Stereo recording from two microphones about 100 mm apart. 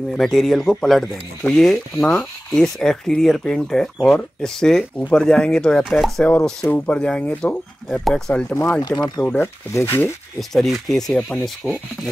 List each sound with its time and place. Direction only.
0.1 s speech: centre (ahead or behind)
6.6 s speech: 15° left (ahead or behind)
8.8 s speech: 40° left (ahead or behind)
9.2 s speech: 15° left (ahead or behind)
10.5 s speech: centre (ahead or behind)